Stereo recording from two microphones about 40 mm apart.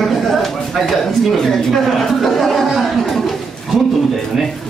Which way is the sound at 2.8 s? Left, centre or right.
Centre.